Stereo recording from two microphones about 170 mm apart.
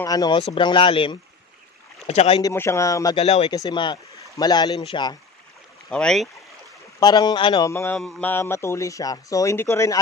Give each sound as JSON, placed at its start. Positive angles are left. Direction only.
{"t": 0.0, "sound": "speech", "side_deg": 20}
{"t": 2.4, "sound": "speech", "side_deg": 15}
{"t": 3.2, "sound": "speech", "side_deg": 35}
{"t": 3.5, "sound": "speech", "side_deg": 25}
{"t": 5.9, "sound": "speech", "side_deg": 5}
{"t": 7.0, "sound": "speech", "side_deg": 25}
{"t": 7.7, "sound": "speech", "side_deg": 15}